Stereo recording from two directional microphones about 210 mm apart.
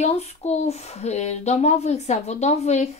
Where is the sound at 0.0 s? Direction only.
30° left (ahead or behind).